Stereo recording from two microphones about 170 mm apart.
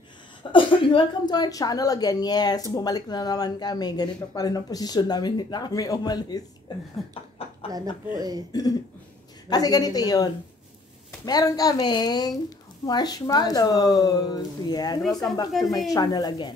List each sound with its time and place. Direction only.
0.4 s a woman's voice: 30° left (ahead or behind)
7.4 s a sound: 35° left (ahead or behind)
8.1 s speech: 20° right (ahead or behind)
8.5 s a woman's voice: 20° left (ahead or behind)
15.5 s speech: centre (ahead or behind)
15.9 s a woman's voice: 20° left (ahead or behind)